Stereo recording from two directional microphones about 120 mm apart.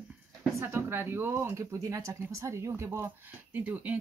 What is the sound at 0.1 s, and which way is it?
A woman's voice, 15° right (ahead or behind).